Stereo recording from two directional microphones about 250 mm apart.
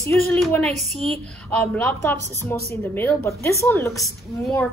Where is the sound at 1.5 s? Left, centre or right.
Centre.